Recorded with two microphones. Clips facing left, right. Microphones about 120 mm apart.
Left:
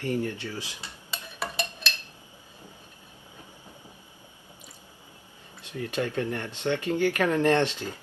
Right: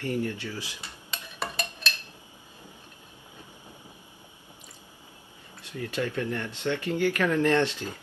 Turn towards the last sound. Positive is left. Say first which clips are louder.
# left 1 dB
turn(degrees=20)  # may be behind; listen again after turning